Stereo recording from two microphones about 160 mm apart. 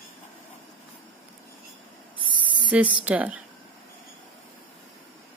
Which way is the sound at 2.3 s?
30° right (ahead or behind).